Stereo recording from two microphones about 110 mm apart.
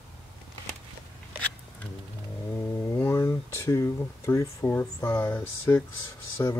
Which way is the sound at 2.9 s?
20° left (ahead or behind).